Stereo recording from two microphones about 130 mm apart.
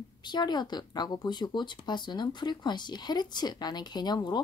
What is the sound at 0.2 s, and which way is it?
Speech, 35° left (ahead or behind).